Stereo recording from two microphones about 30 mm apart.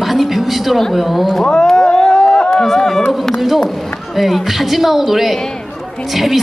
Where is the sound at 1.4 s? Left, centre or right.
Left.